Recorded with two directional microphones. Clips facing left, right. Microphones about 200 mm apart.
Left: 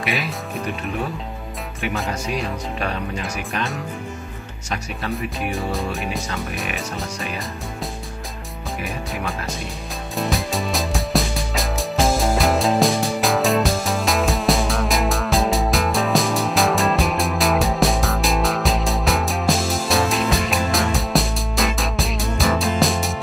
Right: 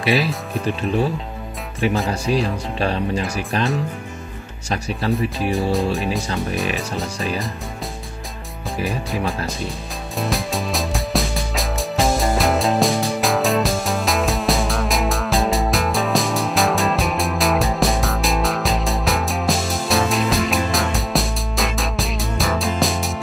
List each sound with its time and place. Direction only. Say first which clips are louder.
0.0 s speech: right 6 dB; 35° right (ahead or behind)
2.2 s speech: right 5 dB; 30° right (ahead or behind)
5.5 s speech: right 7 dB; centre (ahead or behind)
10.1 s music: even; centre (ahead or behind)